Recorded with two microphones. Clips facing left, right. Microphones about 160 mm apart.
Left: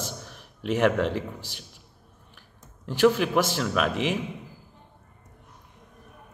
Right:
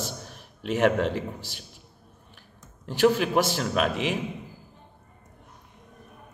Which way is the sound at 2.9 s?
45° right (ahead or behind).